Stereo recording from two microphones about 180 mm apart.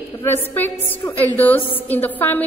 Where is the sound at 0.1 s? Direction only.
15° left (ahead or behind).